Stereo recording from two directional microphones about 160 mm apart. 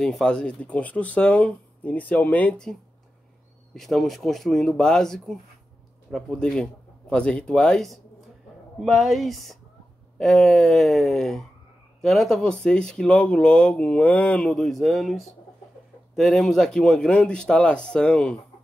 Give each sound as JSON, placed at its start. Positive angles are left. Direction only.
{"t": 0.0, "sound": "speech", "side_deg": 5}